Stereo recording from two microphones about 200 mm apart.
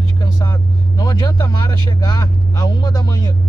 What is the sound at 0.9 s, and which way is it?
Vehicle, 20° left (ahead or behind).